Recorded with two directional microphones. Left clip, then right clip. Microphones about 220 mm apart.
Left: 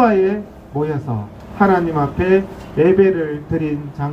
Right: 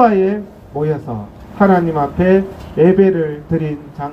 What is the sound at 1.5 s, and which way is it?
Speech, 45° right (ahead or behind).